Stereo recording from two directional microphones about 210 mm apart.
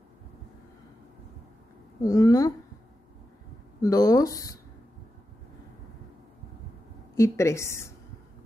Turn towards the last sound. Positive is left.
turn(degrees=15)  # may be behind; listen again after turning